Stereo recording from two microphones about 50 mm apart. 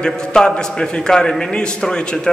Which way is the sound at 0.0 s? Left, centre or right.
Centre.